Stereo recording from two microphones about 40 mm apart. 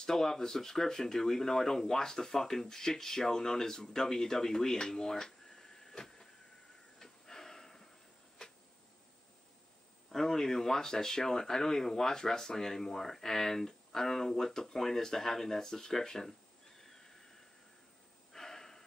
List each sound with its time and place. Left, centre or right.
0.0 s speech: centre
7.0 s snort: centre
8.4 s a sound: centre
10.1 s speech: centre
18.3 s breathing: centre